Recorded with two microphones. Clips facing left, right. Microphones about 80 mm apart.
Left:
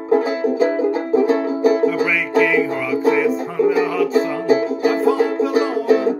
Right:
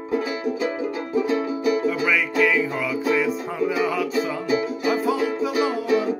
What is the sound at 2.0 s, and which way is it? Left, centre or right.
Music, centre.